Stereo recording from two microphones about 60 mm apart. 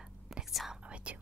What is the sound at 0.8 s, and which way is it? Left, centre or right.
Whispering, centre.